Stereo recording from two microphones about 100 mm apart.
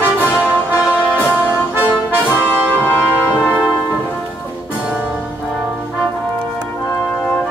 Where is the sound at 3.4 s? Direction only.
10° right (ahead or behind).